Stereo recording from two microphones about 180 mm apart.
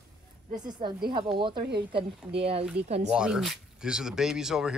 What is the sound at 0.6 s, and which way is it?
Speech, 25° right (ahead or behind).